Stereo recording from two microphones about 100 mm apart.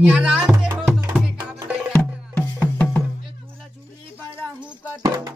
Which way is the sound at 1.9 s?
15° left (ahead or behind).